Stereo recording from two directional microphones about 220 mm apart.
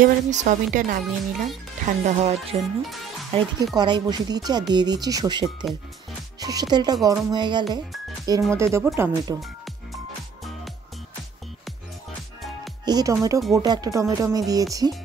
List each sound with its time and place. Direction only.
0.0 s speech: 35° right (ahead or behind); by 9.4 s 10° right (ahead or behind)
12.8 s speech: 15° right (ahead or behind)